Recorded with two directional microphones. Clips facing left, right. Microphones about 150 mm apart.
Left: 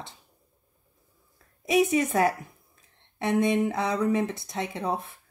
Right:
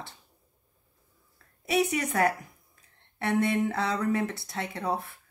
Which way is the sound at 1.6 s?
15° left (ahead or behind).